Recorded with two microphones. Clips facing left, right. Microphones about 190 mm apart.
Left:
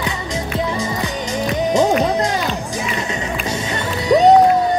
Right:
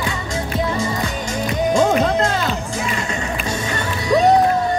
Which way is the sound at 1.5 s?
20° left (ahead or behind).